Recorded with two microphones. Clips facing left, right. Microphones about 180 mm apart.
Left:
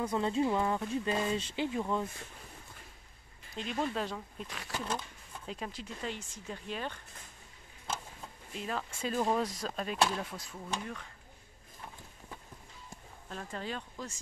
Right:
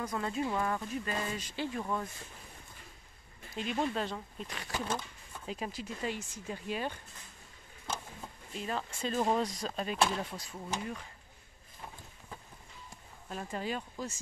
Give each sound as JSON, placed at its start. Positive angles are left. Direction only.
{"t": 0.1, "sound": "speech", "side_deg": 25}
{"t": 3.8, "sound": "speech", "side_deg": 0}
{"t": 8.5, "sound": "speech", "side_deg": 0}
{"t": 13.3, "sound": "speech", "side_deg": -10}